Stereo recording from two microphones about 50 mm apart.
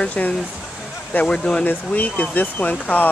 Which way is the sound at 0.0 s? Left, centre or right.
Left.